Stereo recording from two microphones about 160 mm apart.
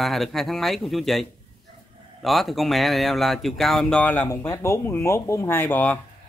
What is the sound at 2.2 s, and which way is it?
Speech, centre (ahead or behind).